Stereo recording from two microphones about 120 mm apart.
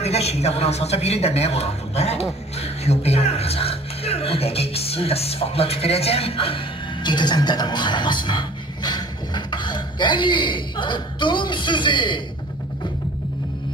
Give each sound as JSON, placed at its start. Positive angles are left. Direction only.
{"t": 0.0, "sound": "a man's voice", "side_deg": 60}